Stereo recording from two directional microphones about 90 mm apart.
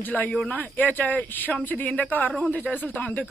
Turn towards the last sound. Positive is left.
turn(degrees=20)  # may be behind; listen again after turning